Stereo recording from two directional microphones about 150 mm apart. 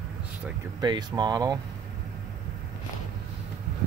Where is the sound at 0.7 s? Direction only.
30° right (ahead or behind).